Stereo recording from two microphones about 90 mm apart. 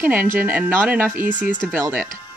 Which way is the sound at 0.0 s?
15° right (ahead or behind).